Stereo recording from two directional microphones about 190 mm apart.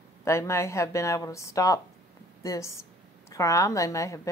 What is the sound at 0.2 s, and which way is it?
Speech, 15° left (ahead or behind).